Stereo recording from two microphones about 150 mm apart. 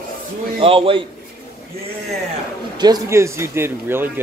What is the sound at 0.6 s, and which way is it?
Speech, 35° right (ahead or behind).